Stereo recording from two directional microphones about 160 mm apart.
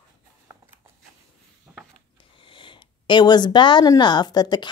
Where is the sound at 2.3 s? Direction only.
30° left (ahead or behind).